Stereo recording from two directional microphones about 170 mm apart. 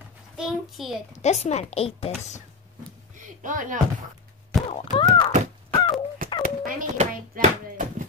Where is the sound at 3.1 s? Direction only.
50° right (ahead or behind).